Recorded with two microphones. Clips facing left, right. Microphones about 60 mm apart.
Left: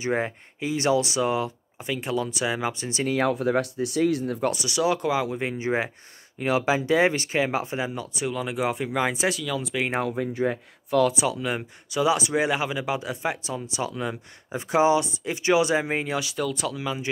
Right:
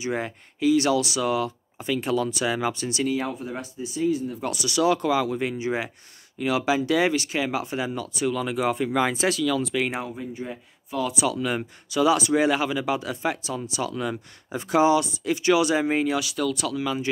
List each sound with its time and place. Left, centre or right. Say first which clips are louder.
0.0 s speech: left 2 dB; left
3.1 s speech: left 5 dB; left
4.5 s speech: right 2 dB; left
10.0 s speech: left 7 dB; left
11.3 s speech: right 2 dB; centre